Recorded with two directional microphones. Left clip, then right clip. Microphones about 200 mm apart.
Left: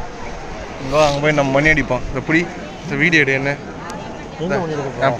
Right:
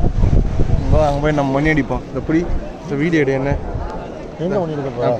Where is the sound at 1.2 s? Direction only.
20° right (ahead or behind).